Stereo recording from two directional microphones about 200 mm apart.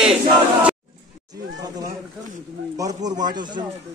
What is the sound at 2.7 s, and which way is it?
Speech, 20° right (ahead or behind).